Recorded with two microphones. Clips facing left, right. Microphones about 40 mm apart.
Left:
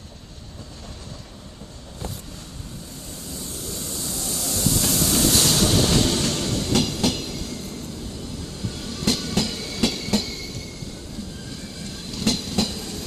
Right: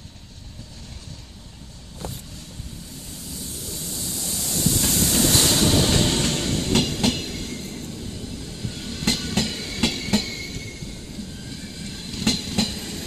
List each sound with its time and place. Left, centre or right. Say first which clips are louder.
3.5 s train: left 2 dB; centre; by 7.8 s right
8.6 s train: left 1 dB; centre
9.0 s train: left 1 dB; right
11.8 s train: even; centre